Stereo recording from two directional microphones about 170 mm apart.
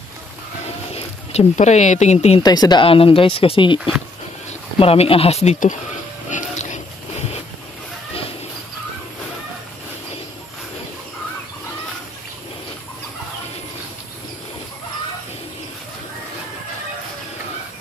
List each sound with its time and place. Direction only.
0.9 s speech: 40° left (ahead or behind)
2.4 s speech: 25° left (ahead or behind); by 5.8 s 45° left (ahead or behind)
6.3 s music: 45° left (ahead or behind)